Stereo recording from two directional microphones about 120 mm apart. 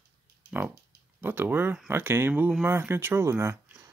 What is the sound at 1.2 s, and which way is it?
Speech, 15° right (ahead or behind).